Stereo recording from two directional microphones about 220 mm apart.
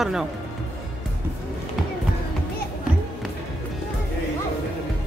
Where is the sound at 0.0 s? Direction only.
Centre (ahead or behind).